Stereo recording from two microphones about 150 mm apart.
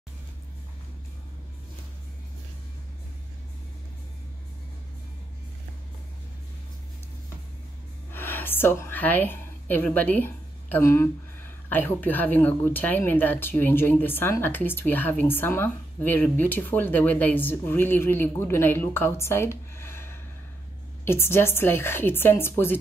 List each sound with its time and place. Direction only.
8.1 s speech: 15° left (ahead or behind)